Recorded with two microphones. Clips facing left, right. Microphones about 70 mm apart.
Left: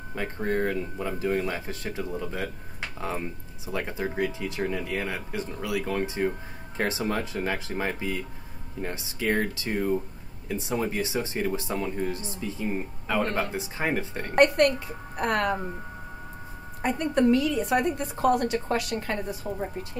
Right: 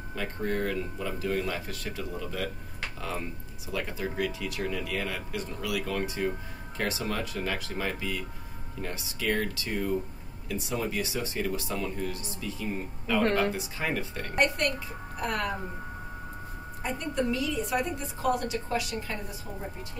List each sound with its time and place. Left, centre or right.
0.1 s speech: left
14.3 s a woman's voice: left
16.8 s a woman's voice: left